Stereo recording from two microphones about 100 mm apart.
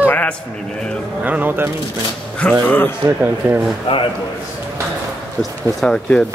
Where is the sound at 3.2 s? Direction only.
20° right (ahead or behind).